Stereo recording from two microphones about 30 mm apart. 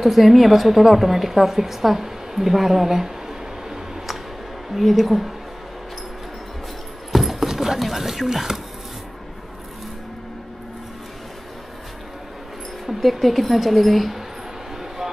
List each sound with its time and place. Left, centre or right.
0.0 s a woman's voice: centre
4.7 s speech: centre
7.1 s clip-clop: centre
7.4 s clip-clop: centre
7.8 s speech: centre
12.8 s speech: centre